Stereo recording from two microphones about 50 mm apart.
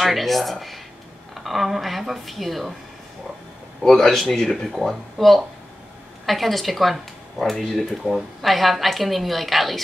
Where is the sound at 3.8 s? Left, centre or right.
Centre.